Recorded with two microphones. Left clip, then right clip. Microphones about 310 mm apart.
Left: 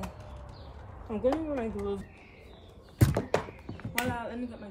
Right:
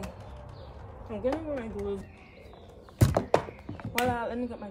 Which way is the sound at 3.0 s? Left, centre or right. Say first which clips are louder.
Right 3 dB; centre.